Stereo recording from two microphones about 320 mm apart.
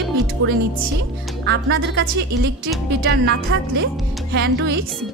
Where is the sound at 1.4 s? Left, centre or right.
Right.